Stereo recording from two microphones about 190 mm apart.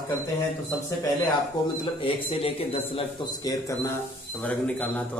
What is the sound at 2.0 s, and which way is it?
A man's voice, 30° left (ahead or behind).